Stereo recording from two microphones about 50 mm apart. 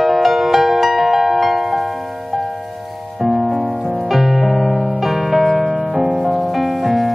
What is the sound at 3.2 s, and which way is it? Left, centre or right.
Music, right.